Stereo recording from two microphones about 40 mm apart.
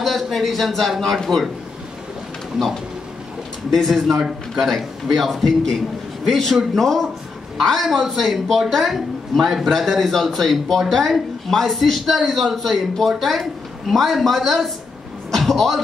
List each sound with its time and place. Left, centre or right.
0.0 s speech: centre
3.7 s a man's voice: centre